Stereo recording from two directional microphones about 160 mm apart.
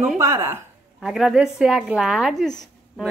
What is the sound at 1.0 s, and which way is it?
Speech, centre (ahead or behind).